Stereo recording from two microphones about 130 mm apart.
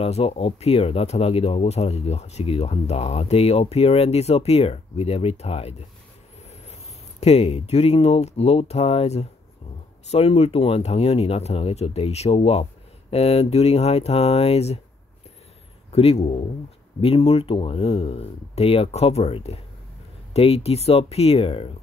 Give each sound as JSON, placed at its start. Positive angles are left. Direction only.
{"t": 0.0, "sound": "speech", "side_deg": 55}
{"t": 15.9, "sound": "speech", "side_deg": 50}